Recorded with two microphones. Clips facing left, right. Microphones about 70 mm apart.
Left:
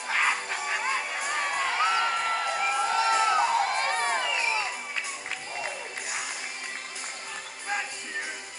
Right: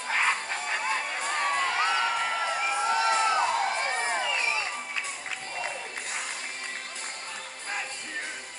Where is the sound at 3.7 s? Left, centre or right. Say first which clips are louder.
Left 2 dB; left.